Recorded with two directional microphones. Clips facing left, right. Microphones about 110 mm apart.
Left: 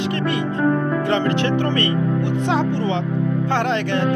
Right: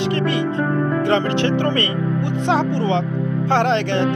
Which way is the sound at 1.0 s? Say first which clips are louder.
Right 2 dB; 30° right (ahead or behind).